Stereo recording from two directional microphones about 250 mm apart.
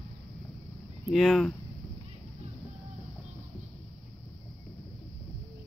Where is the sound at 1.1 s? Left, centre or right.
Centre.